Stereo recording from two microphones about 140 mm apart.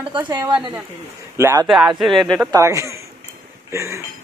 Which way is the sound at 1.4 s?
20° right (ahead or behind).